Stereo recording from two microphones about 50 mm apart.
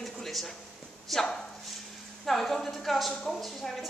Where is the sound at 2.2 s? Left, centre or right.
Centre.